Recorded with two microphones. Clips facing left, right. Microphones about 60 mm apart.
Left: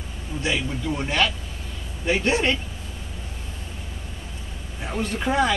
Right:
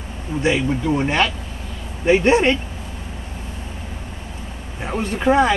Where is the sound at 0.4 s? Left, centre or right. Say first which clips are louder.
Right 7 dB; right.